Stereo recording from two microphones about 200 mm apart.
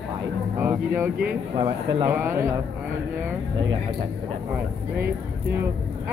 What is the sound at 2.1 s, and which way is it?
Speech, 10° right (ahead or behind).